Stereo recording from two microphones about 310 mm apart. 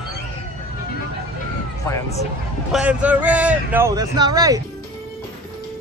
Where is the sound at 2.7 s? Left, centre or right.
Centre.